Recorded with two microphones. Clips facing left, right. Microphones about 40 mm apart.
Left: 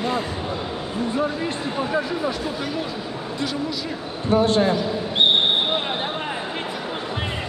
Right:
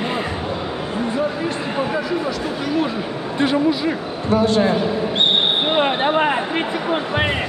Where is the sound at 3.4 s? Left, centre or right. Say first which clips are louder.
Right 10 dB; right.